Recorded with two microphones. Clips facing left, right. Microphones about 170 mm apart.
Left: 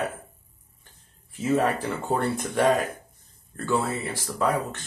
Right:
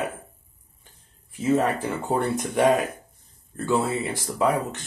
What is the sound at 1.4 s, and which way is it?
Speech, 15° right (ahead or behind).